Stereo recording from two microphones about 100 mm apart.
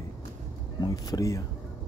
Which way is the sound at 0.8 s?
45° left (ahead or behind).